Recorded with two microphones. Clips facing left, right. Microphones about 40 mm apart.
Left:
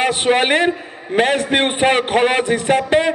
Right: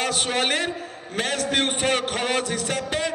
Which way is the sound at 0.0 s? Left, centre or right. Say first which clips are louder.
Left 8 dB; left.